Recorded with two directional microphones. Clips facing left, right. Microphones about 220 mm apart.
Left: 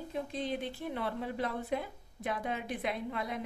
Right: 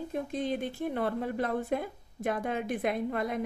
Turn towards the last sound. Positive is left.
turn(degrees=-50)  # may be behind; listen again after turning